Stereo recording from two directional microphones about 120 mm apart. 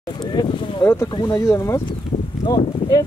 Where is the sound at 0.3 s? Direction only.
35° left (ahead or behind).